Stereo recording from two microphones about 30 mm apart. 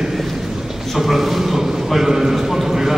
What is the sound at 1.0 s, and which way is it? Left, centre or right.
A man's voice, centre.